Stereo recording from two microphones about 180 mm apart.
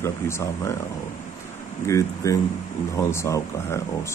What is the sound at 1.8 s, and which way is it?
Speech, 15° left (ahead or behind).